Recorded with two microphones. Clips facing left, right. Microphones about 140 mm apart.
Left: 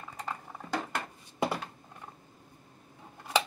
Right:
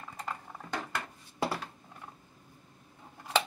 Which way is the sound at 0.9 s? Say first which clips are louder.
Left 2 dB; 20° left (ahead or behind).